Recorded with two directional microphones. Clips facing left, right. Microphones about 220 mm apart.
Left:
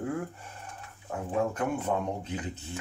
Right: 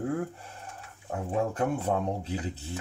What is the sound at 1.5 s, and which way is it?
Speech, 35° right (ahead or behind).